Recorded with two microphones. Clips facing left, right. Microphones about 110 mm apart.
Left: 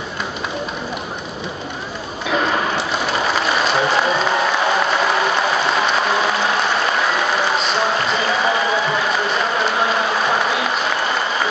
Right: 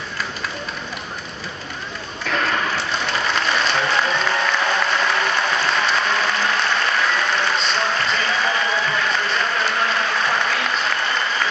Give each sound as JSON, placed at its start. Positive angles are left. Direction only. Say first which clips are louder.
{"t": 2.2, "sound": "mechanisms", "louder": "left 3 dB", "side_deg": 15}
{"t": 3.3, "sound": "applause", "louder": "left 2 dB", "side_deg": 5}